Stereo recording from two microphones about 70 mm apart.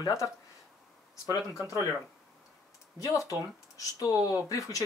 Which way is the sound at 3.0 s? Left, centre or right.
Left.